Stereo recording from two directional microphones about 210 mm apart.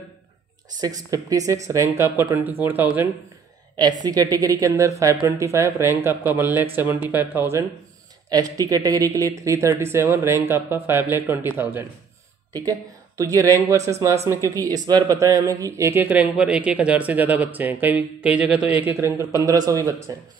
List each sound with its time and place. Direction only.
0.7 s speech: 15° right (ahead or behind)
13.2 s speech: 15° right (ahead or behind)
19.4 s speech: 15° right (ahead or behind)